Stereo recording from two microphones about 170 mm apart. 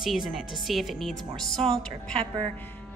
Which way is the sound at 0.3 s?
Centre (ahead or behind).